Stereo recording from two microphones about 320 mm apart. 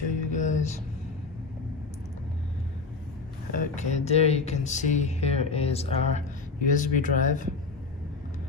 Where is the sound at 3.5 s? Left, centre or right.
Left.